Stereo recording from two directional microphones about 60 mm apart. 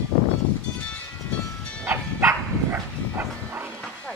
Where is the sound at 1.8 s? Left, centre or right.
Right.